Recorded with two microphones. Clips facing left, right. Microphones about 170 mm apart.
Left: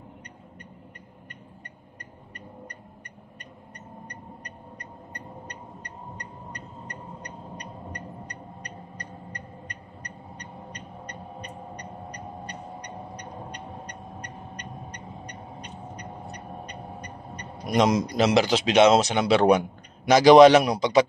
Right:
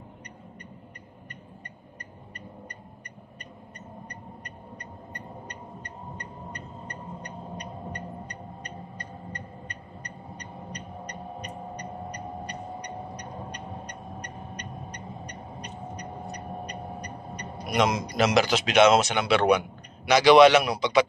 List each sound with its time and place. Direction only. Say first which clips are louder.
17.7 s speech: left 3 dB; 35° left (ahead or behind)